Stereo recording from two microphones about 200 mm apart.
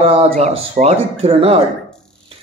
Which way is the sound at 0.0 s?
30° right (ahead or behind).